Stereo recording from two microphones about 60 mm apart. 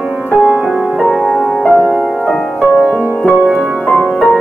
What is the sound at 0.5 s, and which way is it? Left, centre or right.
Music, centre.